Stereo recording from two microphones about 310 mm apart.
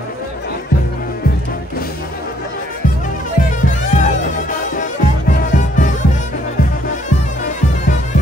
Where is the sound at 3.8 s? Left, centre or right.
Left.